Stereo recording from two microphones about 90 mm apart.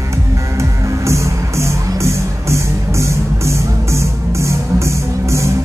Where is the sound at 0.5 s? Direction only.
35° right (ahead or behind).